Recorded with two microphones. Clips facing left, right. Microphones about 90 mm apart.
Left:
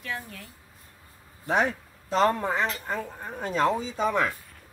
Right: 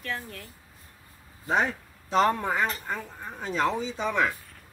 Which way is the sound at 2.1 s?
35° left (ahead or behind).